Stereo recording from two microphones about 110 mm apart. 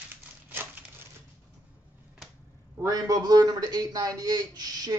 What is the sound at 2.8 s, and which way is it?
A man's voice, 35° right (ahead or behind).